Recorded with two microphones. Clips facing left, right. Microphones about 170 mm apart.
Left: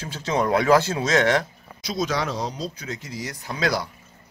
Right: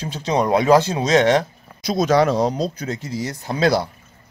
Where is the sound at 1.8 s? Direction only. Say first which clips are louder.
Right 9 dB; 50° right (ahead or behind).